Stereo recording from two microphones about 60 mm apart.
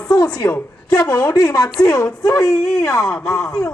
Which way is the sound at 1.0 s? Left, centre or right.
Left.